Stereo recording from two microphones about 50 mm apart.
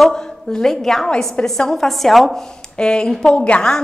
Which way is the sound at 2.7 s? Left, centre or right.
Centre.